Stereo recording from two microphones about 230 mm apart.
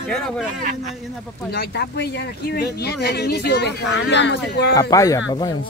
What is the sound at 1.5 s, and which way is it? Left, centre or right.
Speech, left.